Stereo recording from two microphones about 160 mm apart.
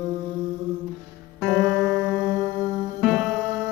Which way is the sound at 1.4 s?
Centre (ahead or behind).